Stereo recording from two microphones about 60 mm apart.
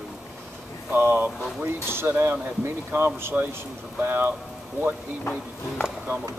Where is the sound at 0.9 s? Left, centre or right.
Right.